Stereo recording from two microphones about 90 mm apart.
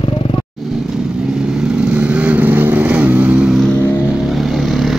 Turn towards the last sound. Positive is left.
turn(degrees=0)  # may be behind; listen again after turning